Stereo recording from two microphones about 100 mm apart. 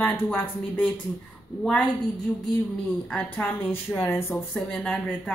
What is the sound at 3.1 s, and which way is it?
Speech, 10° left (ahead or behind).